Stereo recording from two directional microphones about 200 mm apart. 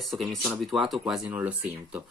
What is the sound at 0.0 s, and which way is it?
Speech, centre (ahead or behind).